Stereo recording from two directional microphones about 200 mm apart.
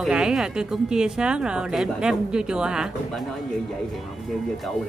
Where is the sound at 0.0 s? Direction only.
5° right (ahead or behind).